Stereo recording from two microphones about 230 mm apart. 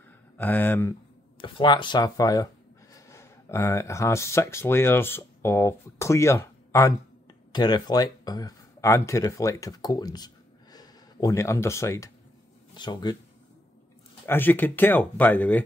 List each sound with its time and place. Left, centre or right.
0.4 s speech: centre
1.4 s speech: left
14.2 s speech: centre